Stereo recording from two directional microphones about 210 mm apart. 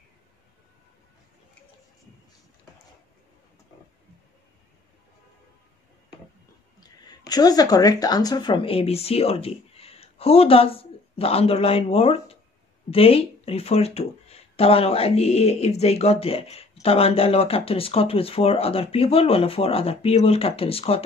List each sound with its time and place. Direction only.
6.8 s speech: 20° left (ahead or behind)